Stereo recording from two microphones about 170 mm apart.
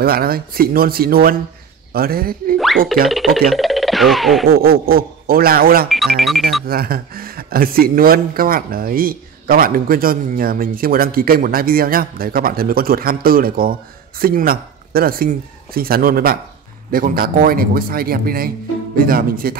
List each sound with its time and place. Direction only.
0.0 s speech: 60° right (ahead or behind)
3.1 s speech: centre (ahead or behind)
4.5 s speech: 60° right (ahead or behind)
5.9 s speech: centre (ahead or behind)
6.7 s speech: 60° right (ahead or behind)